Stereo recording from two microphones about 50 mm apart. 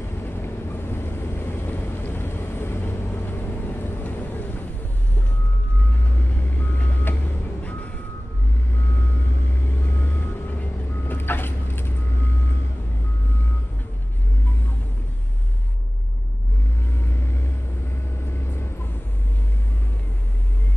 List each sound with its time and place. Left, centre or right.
0.2 s vehicle: left
6.0 s vehicle: left
9.8 s vehicle: left
18.2 s vehicle: left